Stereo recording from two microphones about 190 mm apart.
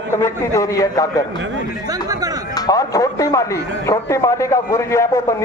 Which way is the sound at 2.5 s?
20° left (ahead or behind).